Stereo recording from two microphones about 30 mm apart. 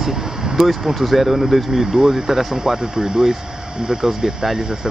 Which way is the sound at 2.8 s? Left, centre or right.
Right.